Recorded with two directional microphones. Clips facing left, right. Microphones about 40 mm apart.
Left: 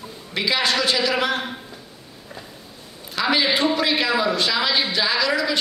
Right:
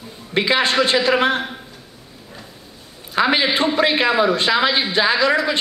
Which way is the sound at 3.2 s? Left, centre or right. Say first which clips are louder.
Right 3 dB; right.